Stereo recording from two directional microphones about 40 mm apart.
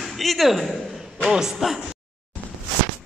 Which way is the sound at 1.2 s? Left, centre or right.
Centre.